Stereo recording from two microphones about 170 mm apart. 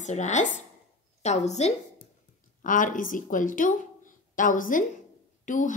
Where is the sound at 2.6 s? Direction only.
50° left (ahead or behind).